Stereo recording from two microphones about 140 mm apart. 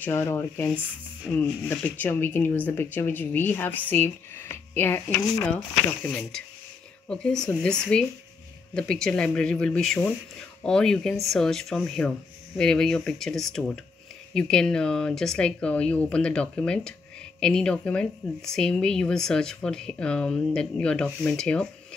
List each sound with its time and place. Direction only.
0.0 s speech: 15° left (ahead or behind)